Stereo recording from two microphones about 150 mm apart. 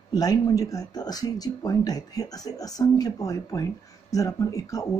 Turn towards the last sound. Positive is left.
turn(degrees=20)  # may be behind; listen again after turning